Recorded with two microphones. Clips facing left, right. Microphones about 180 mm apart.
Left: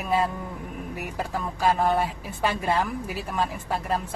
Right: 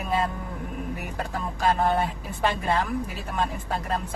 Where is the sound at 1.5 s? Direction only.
5° left (ahead or behind).